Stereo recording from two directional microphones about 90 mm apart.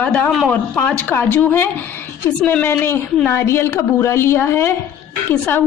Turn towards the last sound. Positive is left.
turn(degrees=20)  # may be behind; listen again after turning